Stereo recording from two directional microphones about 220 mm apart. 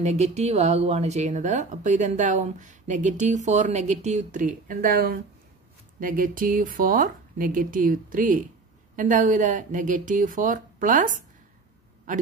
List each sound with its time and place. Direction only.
0.0 s a man's voice: 30° right (ahead or behind)